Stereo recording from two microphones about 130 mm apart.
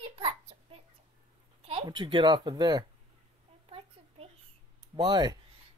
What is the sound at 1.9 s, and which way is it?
Speech, 40° right (ahead or behind).